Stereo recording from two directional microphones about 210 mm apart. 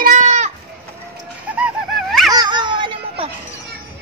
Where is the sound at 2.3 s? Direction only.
20° right (ahead or behind).